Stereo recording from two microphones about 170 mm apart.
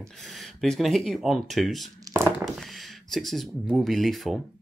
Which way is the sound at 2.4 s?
Centre (ahead or behind).